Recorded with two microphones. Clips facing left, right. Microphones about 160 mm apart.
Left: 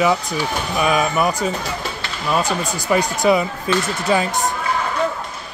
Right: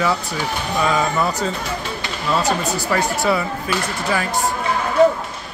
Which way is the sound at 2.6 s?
15° left (ahead or behind).